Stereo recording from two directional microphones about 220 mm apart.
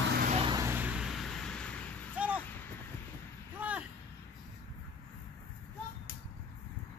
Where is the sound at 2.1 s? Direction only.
5° right (ahead or behind).